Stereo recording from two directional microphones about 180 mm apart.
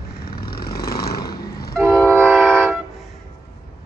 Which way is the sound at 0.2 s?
55° left (ahead or behind).